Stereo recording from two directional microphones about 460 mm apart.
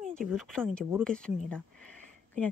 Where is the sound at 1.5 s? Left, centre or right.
Centre.